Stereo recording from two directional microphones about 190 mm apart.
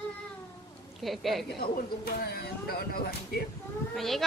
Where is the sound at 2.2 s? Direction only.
55° left (ahead or behind).